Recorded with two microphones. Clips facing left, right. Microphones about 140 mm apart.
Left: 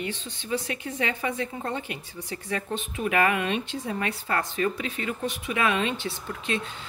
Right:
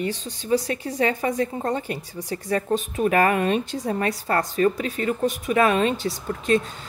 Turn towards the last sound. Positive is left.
turn(degrees=-40)  # may be behind; listen again after turning